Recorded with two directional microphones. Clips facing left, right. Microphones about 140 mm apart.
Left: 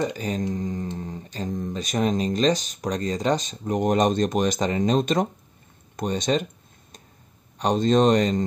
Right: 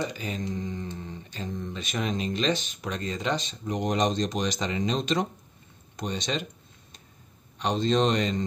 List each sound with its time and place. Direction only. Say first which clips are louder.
0.0 s speech: left 6 dB; 45° left (ahead or behind)
7.5 s speech: left 5 dB; 45° left (ahead or behind)